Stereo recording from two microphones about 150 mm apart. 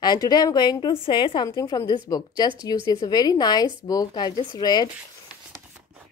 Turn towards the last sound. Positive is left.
turn(degrees=30)  # may be behind; listen again after turning